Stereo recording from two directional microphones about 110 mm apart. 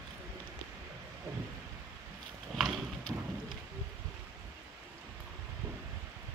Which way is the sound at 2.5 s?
Centre (ahead or behind).